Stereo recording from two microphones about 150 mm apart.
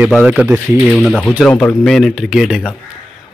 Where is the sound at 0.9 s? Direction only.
5° left (ahead or behind).